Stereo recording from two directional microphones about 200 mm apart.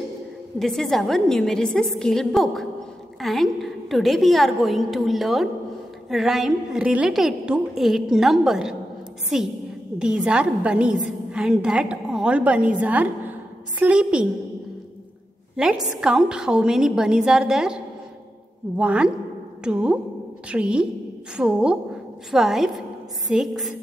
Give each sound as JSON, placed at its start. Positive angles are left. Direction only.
{"t": 0.6, "sound": "a woman's voice", "side_deg": 0}
{"t": 15.5, "sound": "a woman's voice", "side_deg": -5}
{"t": 18.8, "sound": "a woman's voice", "side_deg": -5}